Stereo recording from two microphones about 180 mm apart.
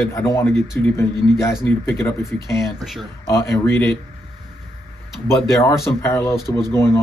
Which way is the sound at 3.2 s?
15° left (ahead or behind).